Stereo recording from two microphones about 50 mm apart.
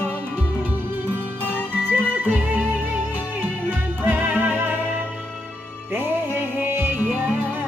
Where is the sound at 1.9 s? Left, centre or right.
Right.